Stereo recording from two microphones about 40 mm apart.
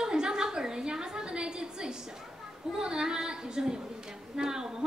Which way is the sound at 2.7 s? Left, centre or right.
Centre.